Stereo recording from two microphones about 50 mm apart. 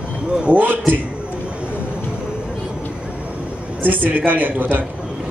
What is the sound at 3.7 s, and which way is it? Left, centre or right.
Speech, right.